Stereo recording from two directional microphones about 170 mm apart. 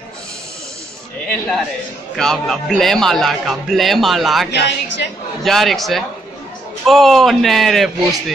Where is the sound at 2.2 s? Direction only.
5° left (ahead or behind).